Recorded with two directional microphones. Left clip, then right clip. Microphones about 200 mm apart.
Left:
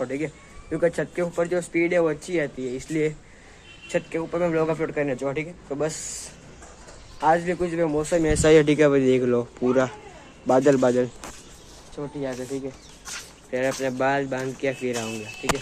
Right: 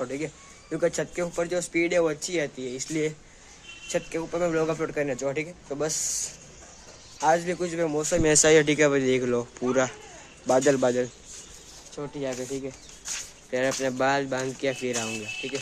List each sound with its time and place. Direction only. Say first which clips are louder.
0.0 s speech: left 3 dB; 15° right (ahead or behind)
7.2 s speech: left 2 dB; 10° right (ahead or behind)
8.4 s speech: left 4 dB; centre (ahead or behind)
12.0 s speech: left 1 dB; 30° right (ahead or behind)